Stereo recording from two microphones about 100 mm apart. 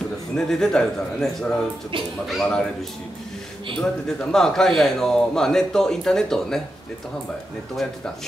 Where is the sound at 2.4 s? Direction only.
5° left (ahead or behind).